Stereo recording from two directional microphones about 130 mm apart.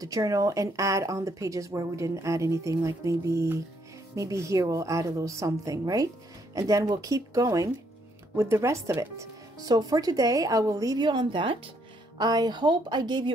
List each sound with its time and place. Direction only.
0.0 s a woman's voice: 25° right (ahead or behind)